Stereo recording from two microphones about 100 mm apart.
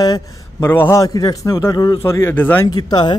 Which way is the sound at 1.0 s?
40° left (ahead or behind).